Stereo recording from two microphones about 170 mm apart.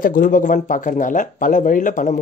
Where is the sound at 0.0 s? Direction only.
55° left (ahead or behind).